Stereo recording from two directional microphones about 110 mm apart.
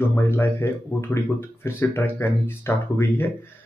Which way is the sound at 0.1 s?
25° left (ahead or behind).